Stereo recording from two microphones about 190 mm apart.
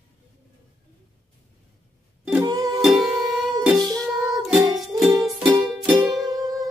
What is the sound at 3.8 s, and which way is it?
Music, 20° right (ahead or behind).